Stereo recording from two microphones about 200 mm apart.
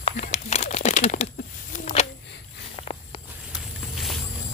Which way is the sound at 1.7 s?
35° left (ahead or behind).